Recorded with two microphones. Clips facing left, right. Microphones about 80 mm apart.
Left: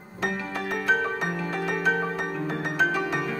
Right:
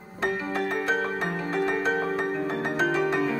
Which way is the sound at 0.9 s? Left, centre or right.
Right.